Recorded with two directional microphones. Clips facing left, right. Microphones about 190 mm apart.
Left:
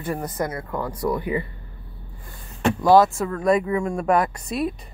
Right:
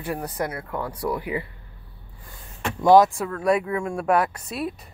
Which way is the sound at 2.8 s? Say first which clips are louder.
Right 1 dB; 15° right (ahead or behind).